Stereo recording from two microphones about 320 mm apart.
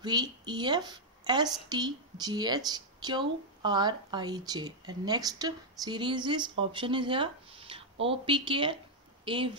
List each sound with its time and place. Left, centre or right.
0.0 s a woman's voice: centre